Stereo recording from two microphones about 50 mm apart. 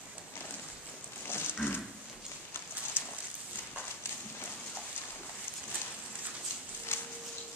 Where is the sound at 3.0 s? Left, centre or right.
Left.